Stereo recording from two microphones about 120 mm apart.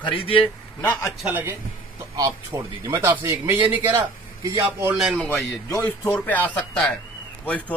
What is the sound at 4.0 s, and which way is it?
Speech, 25° right (ahead or behind).